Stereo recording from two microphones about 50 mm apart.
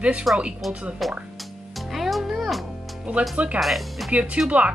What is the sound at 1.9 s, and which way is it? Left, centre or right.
Music, centre.